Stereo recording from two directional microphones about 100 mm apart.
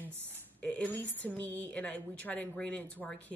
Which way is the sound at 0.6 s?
15° left (ahead or behind).